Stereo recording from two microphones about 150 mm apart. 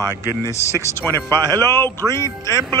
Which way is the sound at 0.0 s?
20° right (ahead or behind).